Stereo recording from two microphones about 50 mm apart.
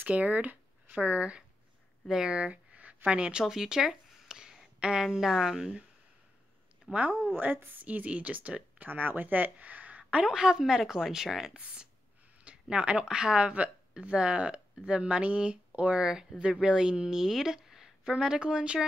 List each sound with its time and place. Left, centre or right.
0.0 s speech: right
2.0 s a woman's voice: centre
2.3 s speech: right
3.4 s a sound: centre
5.0 s a woman's voice: centre
6.9 s speech: right
7.3 s speech: right
10.2 s a woman's voice: centre
11.6 s speech: right
16.0 s a woman's voice: centre